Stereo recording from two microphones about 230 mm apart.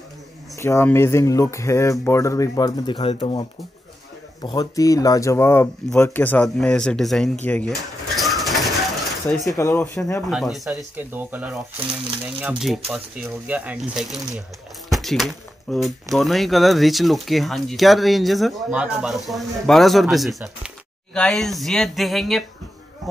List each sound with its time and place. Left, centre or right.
0.6 s speech: centre
8.2 s bird: centre
9.3 s speech: centre
10.3 s speech: centre